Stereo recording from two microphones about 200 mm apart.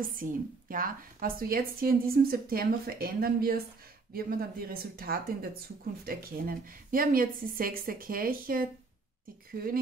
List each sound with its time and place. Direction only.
0.0 s speech: 45° right (ahead or behind)